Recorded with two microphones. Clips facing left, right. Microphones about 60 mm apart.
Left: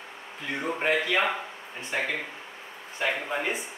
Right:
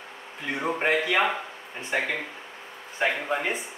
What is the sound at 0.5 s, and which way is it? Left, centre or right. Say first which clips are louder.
Speech: right 2 dB; centre.